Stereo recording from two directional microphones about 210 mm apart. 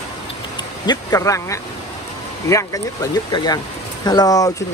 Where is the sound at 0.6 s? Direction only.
20° left (ahead or behind).